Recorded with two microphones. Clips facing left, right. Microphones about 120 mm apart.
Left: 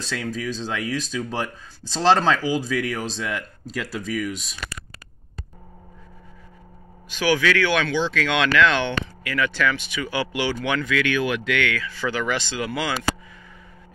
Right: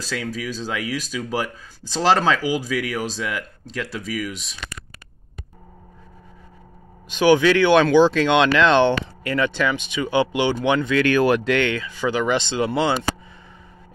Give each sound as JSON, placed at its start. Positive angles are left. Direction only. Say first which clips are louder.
{"t": 0.0, "sound": "speech", "louder": "even", "side_deg": -5}
{"t": 7.1, "sound": "speech", "louder": "right 6 dB", "side_deg": -20}
{"t": 7.8, "sound": "speech", "louder": "right 9 dB", "side_deg": -40}
{"t": 8.2, "sound": "speech", "louder": "right 3 dB", "side_deg": -25}
{"t": 9.5, "sound": "speech", "louder": "right 1 dB", "side_deg": -20}
{"t": 11.0, "sound": "speech", "louder": "right 6 dB", "side_deg": -40}
{"t": 11.8, "sound": "speech", "louder": "right 4 dB", "side_deg": -15}